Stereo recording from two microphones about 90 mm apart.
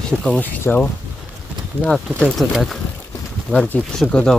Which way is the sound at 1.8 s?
Centre (ahead or behind).